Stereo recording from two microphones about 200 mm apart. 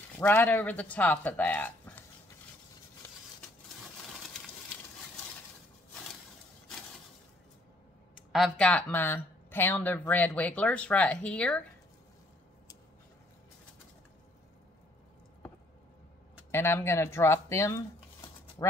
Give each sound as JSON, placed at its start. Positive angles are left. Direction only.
{"t": 0.2, "sound": "speech", "side_deg": 10}
{"t": 8.3, "sound": "speech", "side_deg": 5}
{"t": 16.5, "sound": "speech", "side_deg": 10}